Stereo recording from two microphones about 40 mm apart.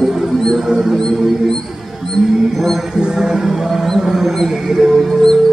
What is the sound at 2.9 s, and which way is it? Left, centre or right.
Speech, centre.